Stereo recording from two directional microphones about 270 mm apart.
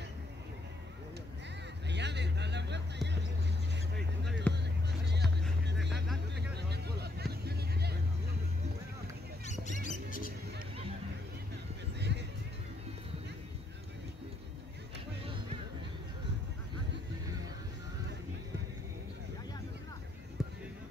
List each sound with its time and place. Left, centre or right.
1.9 s vehicle: right
4.5 s music: centre
6.5 s vehicle: right
9.5 s a sound: left
12.0 s music: right
20.4 s a sound: centre